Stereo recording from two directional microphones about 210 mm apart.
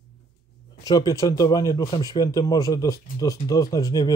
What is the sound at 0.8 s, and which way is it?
Speech, 15° left (ahead or behind).